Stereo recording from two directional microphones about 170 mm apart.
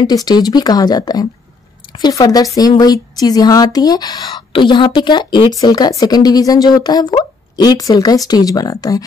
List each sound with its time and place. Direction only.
0.0 s speech: 25° left (ahead or behind)